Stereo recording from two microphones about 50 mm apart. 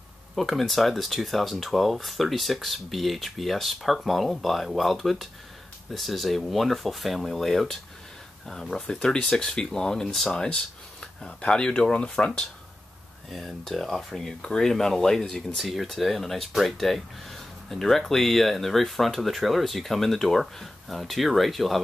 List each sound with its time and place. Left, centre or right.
0.4 s speech: centre
8.7 s speech: centre
10.3 s speech: centre
13.3 s speech: centre
15.5 s speech: centre